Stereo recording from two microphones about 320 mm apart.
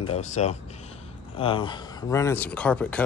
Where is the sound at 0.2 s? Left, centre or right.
Left.